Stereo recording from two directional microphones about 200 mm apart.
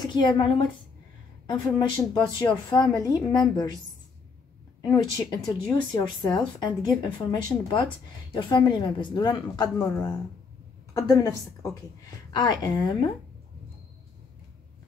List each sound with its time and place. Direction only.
0.0 s a woman's voice: 20° left (ahead or behind)
1.8 s speech: 20° left (ahead or behind)
4.8 s a woman's voice: 20° left (ahead or behind)